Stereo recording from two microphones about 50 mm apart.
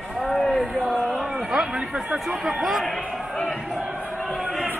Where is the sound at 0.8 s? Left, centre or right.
Centre.